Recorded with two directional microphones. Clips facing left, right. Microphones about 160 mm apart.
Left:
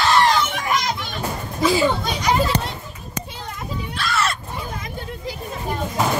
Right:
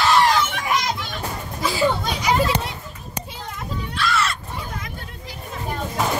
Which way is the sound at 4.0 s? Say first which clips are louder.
Even; 45° left (ahead or behind).